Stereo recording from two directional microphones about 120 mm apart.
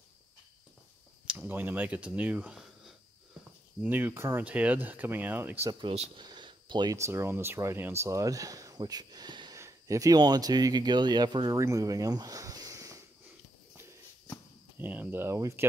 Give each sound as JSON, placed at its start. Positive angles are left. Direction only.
{"t": 1.2, "sound": "speech", "side_deg": -10}
{"t": 3.8, "sound": "speech", "side_deg": -15}
{"t": 5.7, "sound": "speech", "side_deg": -40}
{"t": 6.1, "sound": "a sound", "side_deg": -40}
{"t": 7.0, "sound": "speech", "side_deg": -20}
{"t": 11.6, "sound": "a sound", "side_deg": -25}
{"t": 14.8, "sound": "speech", "side_deg": -15}